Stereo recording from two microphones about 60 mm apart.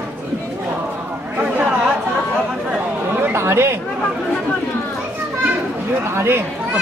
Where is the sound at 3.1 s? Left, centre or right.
Right.